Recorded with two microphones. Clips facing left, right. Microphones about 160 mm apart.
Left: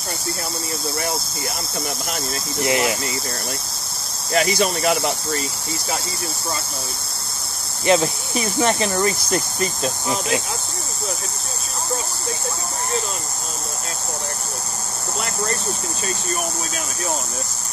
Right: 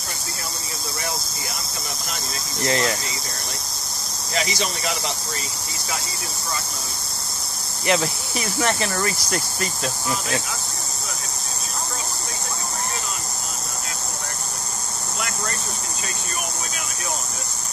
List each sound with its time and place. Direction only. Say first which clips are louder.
2.6 s speech: left 2 dB; 15° left (ahead or behind)
4.3 s speech: left 7 dB; 55° left (ahead or behind)
7.8 s speech: left 4 dB; 25° left (ahead or behind)